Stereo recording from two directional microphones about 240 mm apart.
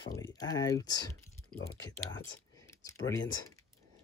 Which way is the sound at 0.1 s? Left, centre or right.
Centre.